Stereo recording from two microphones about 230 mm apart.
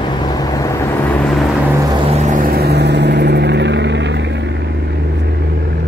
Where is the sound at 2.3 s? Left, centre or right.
Right.